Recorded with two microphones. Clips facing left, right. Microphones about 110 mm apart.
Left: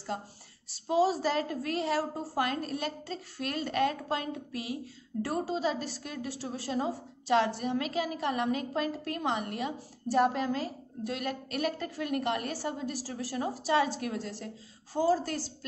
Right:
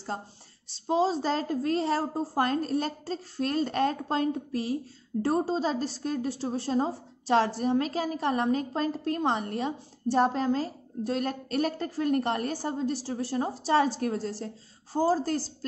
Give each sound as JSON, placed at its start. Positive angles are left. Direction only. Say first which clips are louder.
{"t": 0.7, "sound": "a woman's voice", "louder": "right 1 dB", "side_deg": -30}